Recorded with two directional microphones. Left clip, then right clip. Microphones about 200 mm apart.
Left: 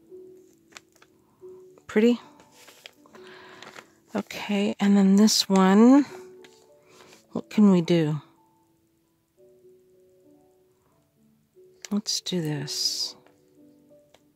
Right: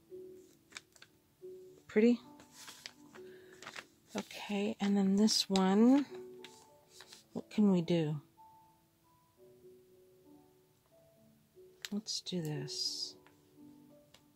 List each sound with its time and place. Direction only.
0.7 s a sound: 5° left (ahead or behind)
1.9 s speech: 45° left (ahead or behind)
4.3 s speech: 50° left (ahead or behind)
7.3 s speech: 50° left (ahead or behind)
11.9 s speech: 55° left (ahead or behind)